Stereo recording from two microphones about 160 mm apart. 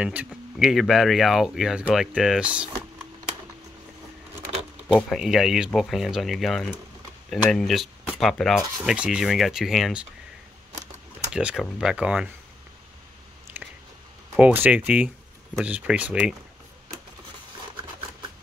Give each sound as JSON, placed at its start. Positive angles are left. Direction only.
{"t": 0.0, "sound": "speech", "side_deg": -10}
{"t": 4.9, "sound": "speech", "side_deg": 0}
{"t": 11.3, "sound": "speech", "side_deg": -5}
{"t": 13.5, "sound": "chewing", "side_deg": -15}
{"t": 14.3, "sound": "speech", "side_deg": -10}